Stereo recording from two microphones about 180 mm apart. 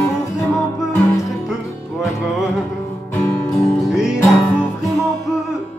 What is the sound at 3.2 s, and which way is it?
Music, centre (ahead or behind).